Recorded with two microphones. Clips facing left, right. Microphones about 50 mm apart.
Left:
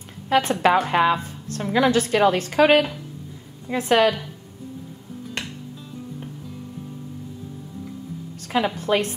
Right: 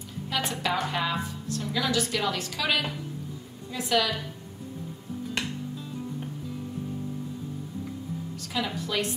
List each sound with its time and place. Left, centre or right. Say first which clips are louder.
0.3 s a woman's voice: left 11 dB; left
8.4 s a woman's voice: left 9 dB; left